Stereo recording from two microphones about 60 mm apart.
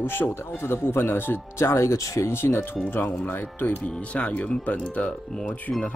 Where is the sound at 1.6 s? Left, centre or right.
Left.